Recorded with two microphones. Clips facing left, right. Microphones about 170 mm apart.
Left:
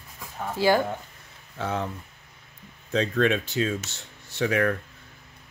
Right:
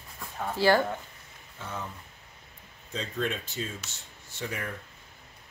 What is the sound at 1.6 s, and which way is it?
Speech, 85° left.